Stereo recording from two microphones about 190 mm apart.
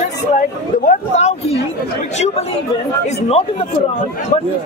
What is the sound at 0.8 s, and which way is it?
A man's voice, 35° left (ahead or behind).